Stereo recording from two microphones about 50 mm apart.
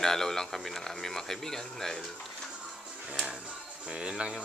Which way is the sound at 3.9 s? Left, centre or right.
Right.